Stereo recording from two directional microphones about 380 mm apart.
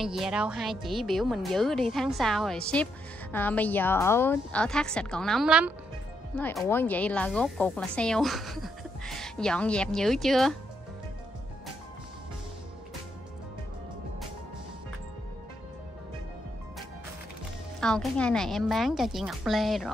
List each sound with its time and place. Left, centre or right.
0.0 s speech: centre
17.7 s speech: centre